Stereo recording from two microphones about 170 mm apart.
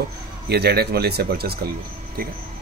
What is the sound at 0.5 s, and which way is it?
Speech, 70° right (ahead or behind).